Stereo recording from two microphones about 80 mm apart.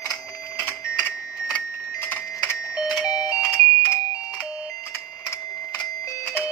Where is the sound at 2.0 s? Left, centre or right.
Left.